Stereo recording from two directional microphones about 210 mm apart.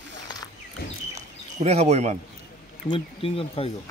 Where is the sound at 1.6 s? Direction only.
30° right (ahead or behind).